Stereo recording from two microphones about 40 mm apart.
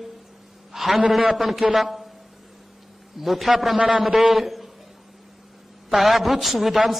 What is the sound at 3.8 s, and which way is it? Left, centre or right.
Speech, right.